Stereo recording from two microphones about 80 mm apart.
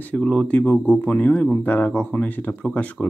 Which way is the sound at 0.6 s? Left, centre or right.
Left.